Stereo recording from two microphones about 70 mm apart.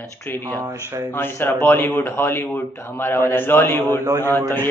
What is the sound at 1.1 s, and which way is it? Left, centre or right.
Speech, left.